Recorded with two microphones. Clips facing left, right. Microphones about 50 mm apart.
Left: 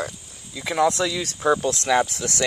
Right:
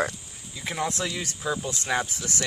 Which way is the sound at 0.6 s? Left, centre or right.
Left.